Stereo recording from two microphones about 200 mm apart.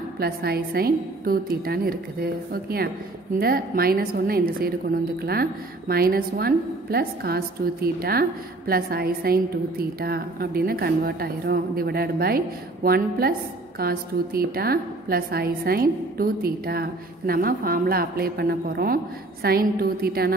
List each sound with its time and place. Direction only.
0.2 s a woman's voice: 50° right (ahead or behind)